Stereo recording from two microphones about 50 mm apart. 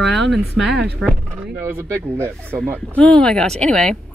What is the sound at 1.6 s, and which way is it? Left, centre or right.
Speech, right.